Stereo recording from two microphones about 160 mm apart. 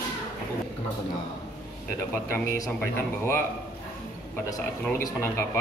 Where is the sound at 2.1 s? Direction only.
15° left (ahead or behind).